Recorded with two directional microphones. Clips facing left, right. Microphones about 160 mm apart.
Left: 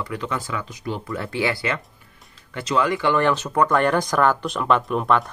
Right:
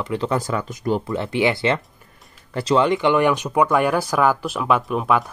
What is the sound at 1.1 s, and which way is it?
Speech, 20° right (ahead or behind).